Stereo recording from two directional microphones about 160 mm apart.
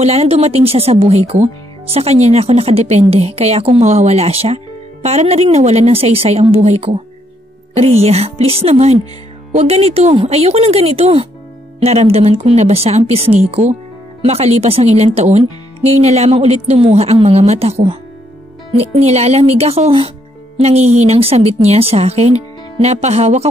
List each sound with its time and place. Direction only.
0.0 s speech: 40° right (ahead or behind)